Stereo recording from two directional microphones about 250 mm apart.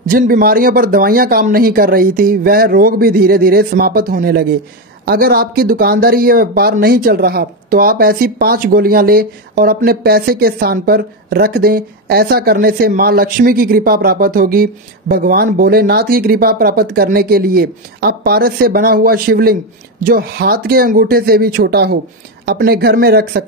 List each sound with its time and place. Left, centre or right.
0.0 s speech: right